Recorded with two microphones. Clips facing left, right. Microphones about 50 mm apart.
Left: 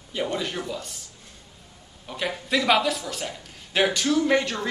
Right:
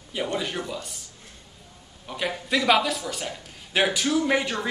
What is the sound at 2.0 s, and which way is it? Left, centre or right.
Speech, centre.